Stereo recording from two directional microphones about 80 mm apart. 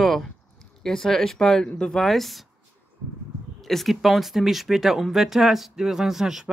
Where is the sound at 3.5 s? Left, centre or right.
Centre.